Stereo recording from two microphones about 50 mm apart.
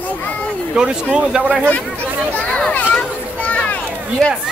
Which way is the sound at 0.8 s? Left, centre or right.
Centre.